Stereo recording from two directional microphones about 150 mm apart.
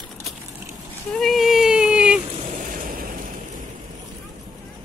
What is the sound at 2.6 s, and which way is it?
Vehicle, 65° right (ahead or behind).